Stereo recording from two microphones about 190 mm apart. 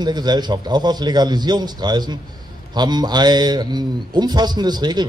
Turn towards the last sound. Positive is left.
turn(degrees=-20)  # may be behind; listen again after turning